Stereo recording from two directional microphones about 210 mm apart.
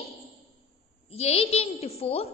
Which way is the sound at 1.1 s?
30° left (ahead or behind).